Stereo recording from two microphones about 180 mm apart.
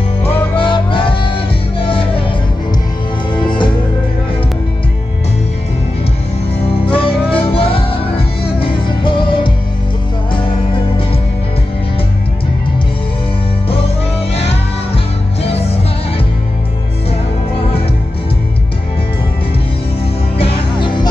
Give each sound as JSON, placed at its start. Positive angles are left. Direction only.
{"t": 0.2, "sound": "music", "side_deg": 30}
{"t": 3.4, "sound": "music", "side_deg": 25}
{"t": 6.9, "sound": "music", "side_deg": 30}
{"t": 14.3, "sound": "music", "side_deg": 35}
{"t": 20.3, "sound": "music", "side_deg": 30}